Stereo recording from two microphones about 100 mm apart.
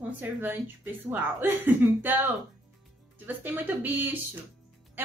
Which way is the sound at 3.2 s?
20° right (ahead or behind).